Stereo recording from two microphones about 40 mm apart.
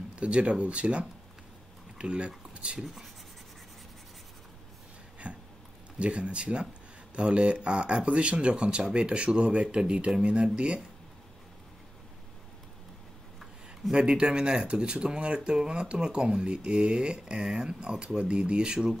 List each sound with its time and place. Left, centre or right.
0.1 s speech: right
2.8 s speech: centre
5.2 s a sound: right
5.9 s speech: right
13.9 s speech: right